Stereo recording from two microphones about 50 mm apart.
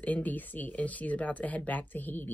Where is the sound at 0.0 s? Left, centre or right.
Left.